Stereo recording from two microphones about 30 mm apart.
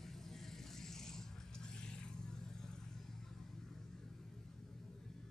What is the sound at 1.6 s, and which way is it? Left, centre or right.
Vehicle, left.